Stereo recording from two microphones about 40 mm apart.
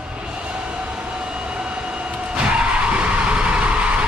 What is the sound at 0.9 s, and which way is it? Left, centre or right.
Vehicle, right.